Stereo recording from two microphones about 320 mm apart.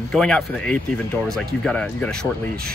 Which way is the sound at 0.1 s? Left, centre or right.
Centre.